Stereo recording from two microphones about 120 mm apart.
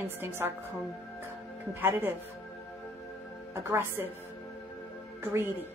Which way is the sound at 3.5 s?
20° right (ahead or behind).